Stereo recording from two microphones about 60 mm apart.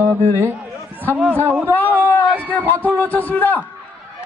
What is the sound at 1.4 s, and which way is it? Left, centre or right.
Speech, right.